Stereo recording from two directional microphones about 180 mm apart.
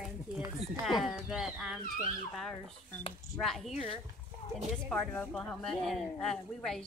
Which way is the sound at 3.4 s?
Centre (ahead or behind).